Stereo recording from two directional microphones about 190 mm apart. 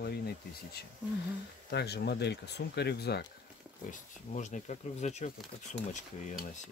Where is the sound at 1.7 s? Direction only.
60° left (ahead or behind).